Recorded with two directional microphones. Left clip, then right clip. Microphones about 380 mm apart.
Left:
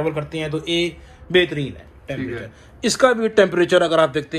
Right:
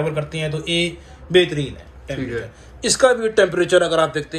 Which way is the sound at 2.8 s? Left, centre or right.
Centre.